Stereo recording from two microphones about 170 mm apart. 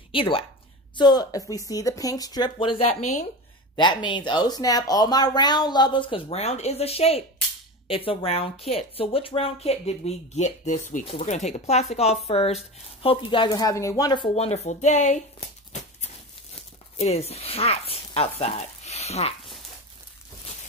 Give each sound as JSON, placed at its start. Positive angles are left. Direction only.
{"t": 0.1, "sound": "speech", "side_deg": 30}
{"t": 16.9, "sound": "speech", "side_deg": 40}